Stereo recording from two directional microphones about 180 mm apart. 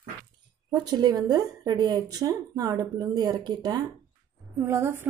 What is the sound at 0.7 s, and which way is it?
A woman's voice, 20° right (ahead or behind).